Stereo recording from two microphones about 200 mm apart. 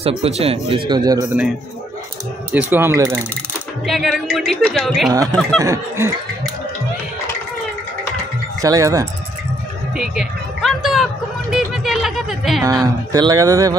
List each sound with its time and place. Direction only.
0.2 s speech: 30° right (ahead or behind)
2.5 s speech: 10° right (ahead or behind)
3.8 s speech: centre (ahead or behind)
5.6 s speech: 15° right (ahead or behind)
8.5 s speech: 15° right (ahead or behind)
9.9 s speech: centre (ahead or behind)
11.5 s music: centre (ahead or behind)
12.8 s speech: 20° right (ahead or behind)